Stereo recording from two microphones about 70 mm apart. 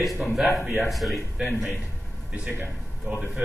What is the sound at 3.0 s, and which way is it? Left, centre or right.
Speech, centre.